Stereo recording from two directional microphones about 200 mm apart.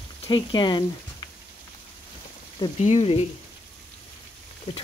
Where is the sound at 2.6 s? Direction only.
30° left (ahead or behind).